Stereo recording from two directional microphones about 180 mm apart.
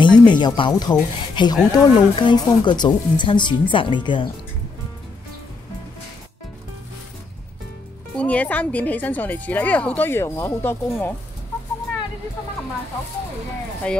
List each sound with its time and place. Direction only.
0.0 s speech: 25° left (ahead or behind)
8.2 s a woman's voice: 10° left (ahead or behind)